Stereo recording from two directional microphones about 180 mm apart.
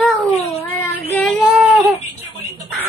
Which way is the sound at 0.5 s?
35° left (ahead or behind).